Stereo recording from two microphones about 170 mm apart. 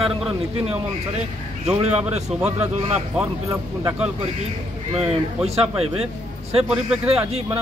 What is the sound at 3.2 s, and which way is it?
Speech, 20° right (ahead or behind).